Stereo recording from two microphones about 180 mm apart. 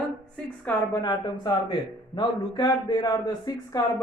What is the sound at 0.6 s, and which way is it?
Speech, 20° left (ahead or behind).